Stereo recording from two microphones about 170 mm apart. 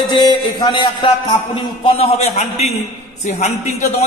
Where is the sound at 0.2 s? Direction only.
25° left (ahead or behind).